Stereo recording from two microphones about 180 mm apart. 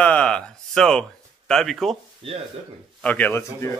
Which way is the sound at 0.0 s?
5° left (ahead or behind).